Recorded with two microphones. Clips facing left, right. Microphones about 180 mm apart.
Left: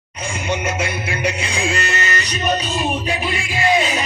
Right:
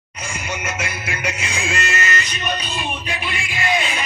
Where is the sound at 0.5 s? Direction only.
30° left (ahead or behind).